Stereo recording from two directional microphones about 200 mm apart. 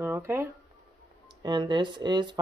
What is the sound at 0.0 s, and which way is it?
Speech, 10° right (ahead or behind).